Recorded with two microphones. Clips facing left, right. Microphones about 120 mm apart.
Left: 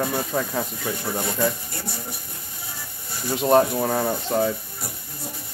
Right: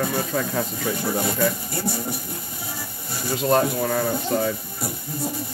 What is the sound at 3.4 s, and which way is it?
Speech, 20° left (ahead or behind).